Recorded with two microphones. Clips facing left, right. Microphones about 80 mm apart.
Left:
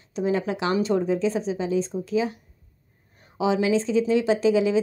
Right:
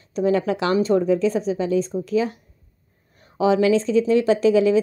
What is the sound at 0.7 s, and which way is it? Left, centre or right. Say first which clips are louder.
Speech: right 4 dB; right.